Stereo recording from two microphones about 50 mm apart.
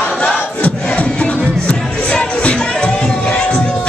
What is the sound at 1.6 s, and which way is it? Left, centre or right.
Music, left.